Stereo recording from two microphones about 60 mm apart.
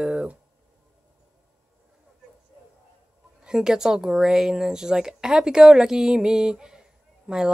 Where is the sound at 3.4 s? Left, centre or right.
Centre.